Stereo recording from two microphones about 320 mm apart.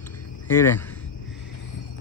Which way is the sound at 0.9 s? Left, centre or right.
Left.